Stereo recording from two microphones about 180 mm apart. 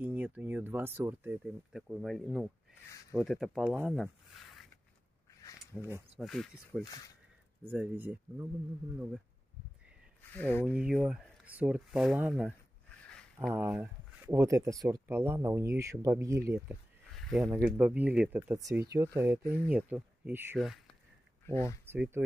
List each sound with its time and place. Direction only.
0.0 s speech: 10° right (ahead or behind)
3.9 s a sound: centre (ahead or behind)
5.8 s speech: 15° right (ahead or behind)
6.1 s speech: centre (ahead or behind)
7.6 s speech: 10° right (ahead or behind)
10.3 s speech: 10° left (ahead or behind)
10.7 s speech: 5° right (ahead or behind)
19.4 s speech: 15° left (ahead or behind)
19.7 s speech: 10° right (ahead or behind)
20.5 s speech: centre (ahead or behind)
21.5 s speech: 15° left (ahead or behind)
21.8 s speech: 10° right (ahead or behind)